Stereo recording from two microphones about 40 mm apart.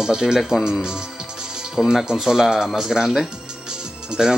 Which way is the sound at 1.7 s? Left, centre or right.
Centre.